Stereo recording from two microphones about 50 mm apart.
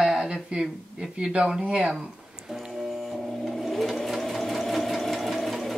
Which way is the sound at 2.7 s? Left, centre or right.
Centre.